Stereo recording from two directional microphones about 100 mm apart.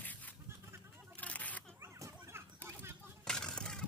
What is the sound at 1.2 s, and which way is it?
Single-lens reflex camera, 15° left (ahead or behind).